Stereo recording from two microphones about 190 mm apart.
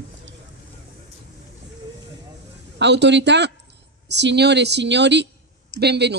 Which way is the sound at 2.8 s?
65° right (ahead or behind).